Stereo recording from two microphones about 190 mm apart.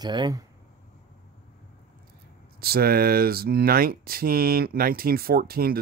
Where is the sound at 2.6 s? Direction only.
55° right (ahead or behind).